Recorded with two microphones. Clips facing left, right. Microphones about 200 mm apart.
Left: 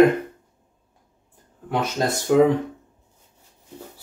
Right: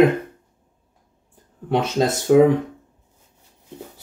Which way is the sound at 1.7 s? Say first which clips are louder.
Right 4 dB; 25° right (ahead or behind).